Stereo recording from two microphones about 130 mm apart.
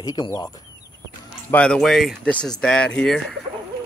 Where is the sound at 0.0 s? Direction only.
30° left (ahead or behind).